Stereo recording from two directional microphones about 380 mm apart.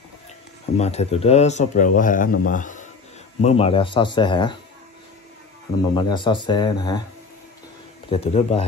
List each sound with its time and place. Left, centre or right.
0.7 s speech: centre
5.9 s speech: centre
8.1 s speech: centre